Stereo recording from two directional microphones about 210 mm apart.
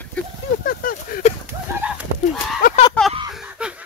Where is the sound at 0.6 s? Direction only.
40° left (ahead or behind).